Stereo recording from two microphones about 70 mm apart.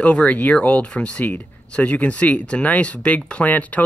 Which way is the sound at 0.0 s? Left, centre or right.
Centre.